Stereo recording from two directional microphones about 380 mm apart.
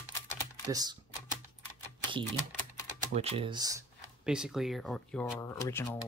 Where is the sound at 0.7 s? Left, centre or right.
Centre.